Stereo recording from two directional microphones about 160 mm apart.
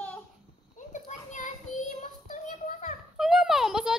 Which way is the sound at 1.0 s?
50° left (ahead or behind).